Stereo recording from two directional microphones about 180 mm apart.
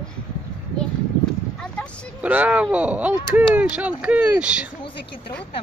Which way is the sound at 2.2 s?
10° right (ahead or behind).